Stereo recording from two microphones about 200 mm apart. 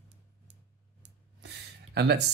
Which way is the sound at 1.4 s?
55° right (ahead or behind).